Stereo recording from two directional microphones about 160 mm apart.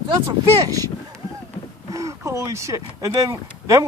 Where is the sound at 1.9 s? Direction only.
20° right (ahead or behind).